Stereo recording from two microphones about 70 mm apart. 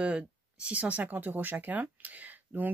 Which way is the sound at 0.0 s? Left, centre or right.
Centre.